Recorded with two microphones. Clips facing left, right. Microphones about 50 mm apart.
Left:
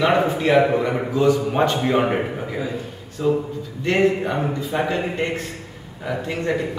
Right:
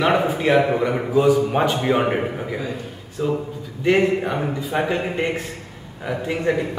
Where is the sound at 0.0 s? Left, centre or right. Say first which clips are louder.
Even; centre.